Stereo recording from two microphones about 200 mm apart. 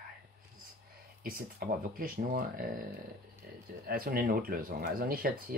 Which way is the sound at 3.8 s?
45° right (ahead or behind).